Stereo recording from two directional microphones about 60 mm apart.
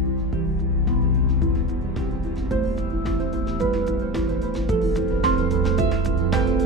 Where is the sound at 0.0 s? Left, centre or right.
Centre.